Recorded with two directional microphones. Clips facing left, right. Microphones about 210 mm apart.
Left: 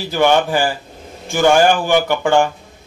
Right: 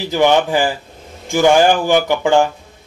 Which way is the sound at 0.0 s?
15° right (ahead or behind).